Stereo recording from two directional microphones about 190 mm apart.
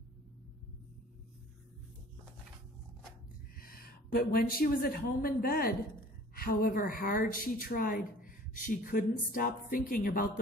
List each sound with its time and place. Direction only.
3.5 s a woman's voice: 50° left (ahead or behind)